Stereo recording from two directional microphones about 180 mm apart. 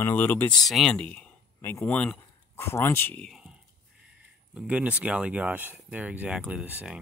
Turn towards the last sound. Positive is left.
turn(degrees=-5)  # may be behind; listen again after turning